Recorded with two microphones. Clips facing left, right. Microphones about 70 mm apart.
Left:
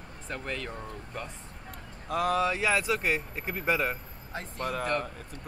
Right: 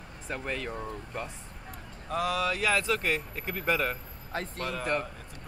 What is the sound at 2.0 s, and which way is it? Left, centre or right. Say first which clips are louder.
Speech: left 2 dB; left.